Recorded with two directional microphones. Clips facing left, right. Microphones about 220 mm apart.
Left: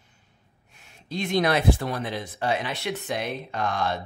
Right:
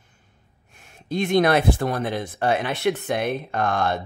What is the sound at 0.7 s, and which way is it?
Speech, 50° right (ahead or behind).